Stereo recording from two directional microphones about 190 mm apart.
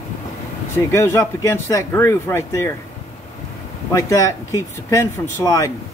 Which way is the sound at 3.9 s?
15° left (ahead or behind).